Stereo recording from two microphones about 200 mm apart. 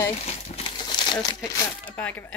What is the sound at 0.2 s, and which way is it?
Crumpling, 30° left (ahead or behind).